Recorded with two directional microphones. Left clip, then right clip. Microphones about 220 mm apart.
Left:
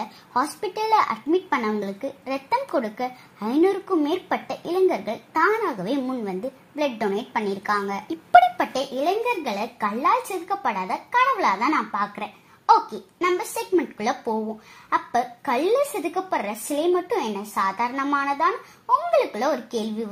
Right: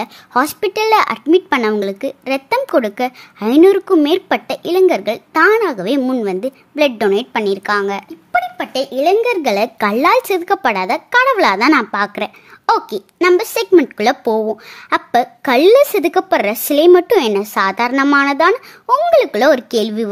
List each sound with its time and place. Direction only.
0.0 s speech: 30° right (ahead or behind)
9.0 s speech: 45° right (ahead or behind)